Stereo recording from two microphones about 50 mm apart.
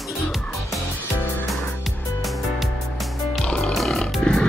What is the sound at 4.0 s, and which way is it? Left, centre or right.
Roaring cats, centre.